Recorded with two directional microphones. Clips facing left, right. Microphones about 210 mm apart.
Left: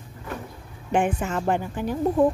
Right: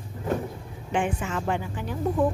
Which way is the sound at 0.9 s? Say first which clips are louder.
Left 4 dB; 50° left (ahead or behind).